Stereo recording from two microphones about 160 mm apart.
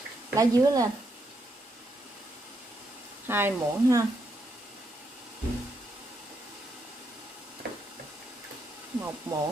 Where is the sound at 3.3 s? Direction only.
15° right (ahead or behind).